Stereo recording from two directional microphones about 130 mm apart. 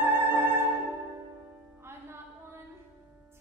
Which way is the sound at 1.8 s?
20° right (ahead or behind).